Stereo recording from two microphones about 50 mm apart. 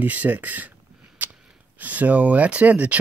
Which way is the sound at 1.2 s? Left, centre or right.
Right.